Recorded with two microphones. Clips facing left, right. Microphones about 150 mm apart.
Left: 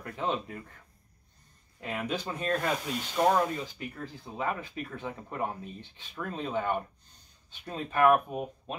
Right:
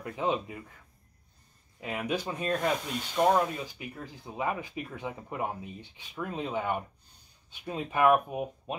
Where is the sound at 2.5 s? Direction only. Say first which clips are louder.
Right 1 dB; centre (ahead or behind).